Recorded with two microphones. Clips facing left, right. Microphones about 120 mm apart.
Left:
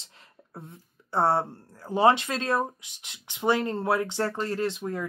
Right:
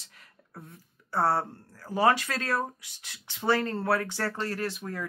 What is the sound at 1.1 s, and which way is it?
Speech, 25° left (ahead or behind).